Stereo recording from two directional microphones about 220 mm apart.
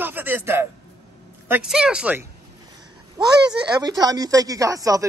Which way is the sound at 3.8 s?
15° right (ahead or behind).